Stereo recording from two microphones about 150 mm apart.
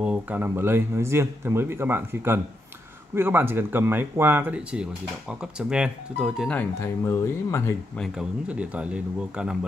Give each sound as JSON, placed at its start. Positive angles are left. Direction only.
{"t": 0.0, "sound": "speech", "side_deg": -10}
{"t": 6.5, "sound": "speech", "side_deg": 15}
{"t": 8.0, "sound": "speech", "side_deg": -5}